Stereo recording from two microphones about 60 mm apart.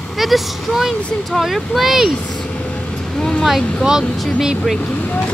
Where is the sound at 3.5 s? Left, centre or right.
Centre.